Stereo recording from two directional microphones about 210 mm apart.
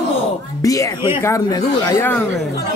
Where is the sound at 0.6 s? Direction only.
15° left (ahead or behind).